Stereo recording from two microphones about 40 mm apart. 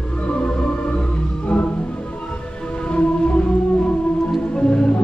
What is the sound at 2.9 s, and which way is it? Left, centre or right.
Music, left.